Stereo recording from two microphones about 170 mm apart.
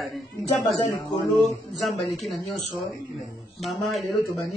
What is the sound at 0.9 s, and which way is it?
Speech, 20° left (ahead or behind).